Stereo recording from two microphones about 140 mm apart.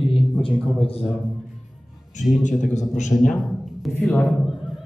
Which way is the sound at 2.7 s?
60° left (ahead or behind).